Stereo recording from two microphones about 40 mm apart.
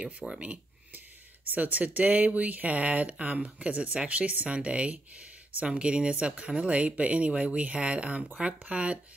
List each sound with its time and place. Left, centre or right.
0.2 s speech: centre
1.5 s speech: right
5.1 s a sound: right
5.8 s speech: right